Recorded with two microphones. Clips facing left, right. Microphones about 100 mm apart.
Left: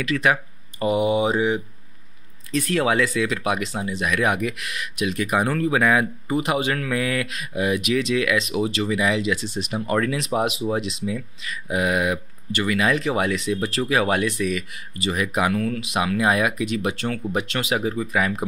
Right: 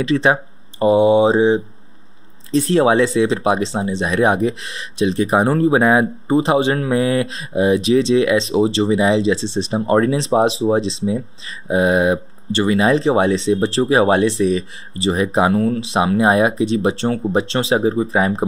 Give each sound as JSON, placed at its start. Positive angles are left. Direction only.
{"t": 0.0, "sound": "speech", "side_deg": -30}